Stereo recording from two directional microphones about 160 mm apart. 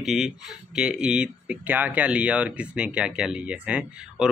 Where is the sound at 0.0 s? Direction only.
Centre (ahead or behind).